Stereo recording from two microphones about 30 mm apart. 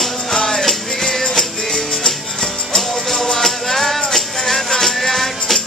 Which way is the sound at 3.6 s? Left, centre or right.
Centre.